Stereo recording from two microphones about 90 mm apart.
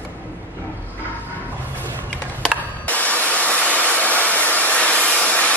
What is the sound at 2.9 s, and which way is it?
Hair dryer, 15° left (ahead or behind).